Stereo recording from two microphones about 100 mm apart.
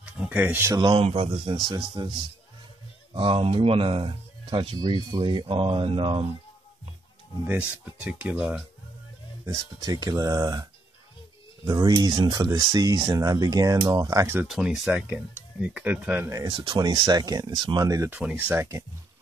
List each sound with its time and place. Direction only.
0.0 s speech: 15° right (ahead or behind)
0.7 s a man's voice: 60° right (ahead or behind)
3.1 s a man's voice: 60° right (ahead or behind)
7.4 s speech: 15° right (ahead or behind)
9.8 s speech: 40° right (ahead or behind)
14.5 s speech: 10° right (ahead or behind)
16.4 s speech: 55° right (ahead or behind); by 18.1 s 35° right (ahead or behind)
18.1 s speech: 20° right (ahead or behind)